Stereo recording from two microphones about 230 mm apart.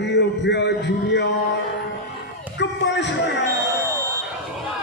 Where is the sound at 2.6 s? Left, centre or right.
Left.